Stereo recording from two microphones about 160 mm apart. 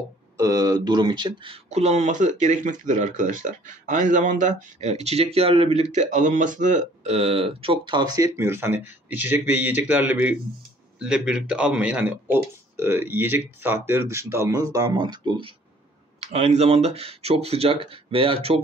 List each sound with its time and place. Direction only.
0.4 s speech: 20° right (ahead or behind)
16.2 s speech: 40° right (ahead or behind)